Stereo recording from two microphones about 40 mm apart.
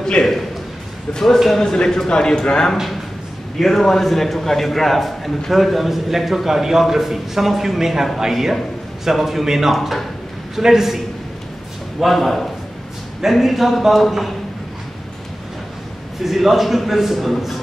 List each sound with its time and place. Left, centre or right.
0.0 s a man's voice: centre
1.9 s a man's voice: centre
12.0 s a man's voice: centre
16.2 s a man's voice: centre